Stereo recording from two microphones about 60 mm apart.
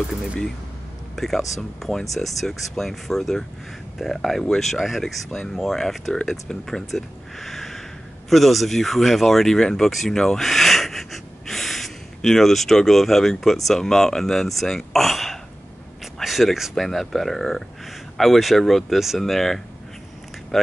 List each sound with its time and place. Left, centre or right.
1.1 s speech: centre